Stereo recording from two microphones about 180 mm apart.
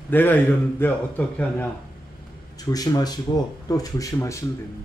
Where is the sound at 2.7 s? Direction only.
20° left (ahead or behind).